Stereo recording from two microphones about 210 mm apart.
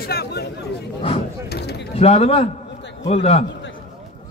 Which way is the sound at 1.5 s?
50° left (ahead or behind).